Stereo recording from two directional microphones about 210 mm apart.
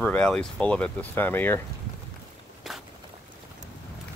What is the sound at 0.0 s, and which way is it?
Speech, 5° left (ahead or behind).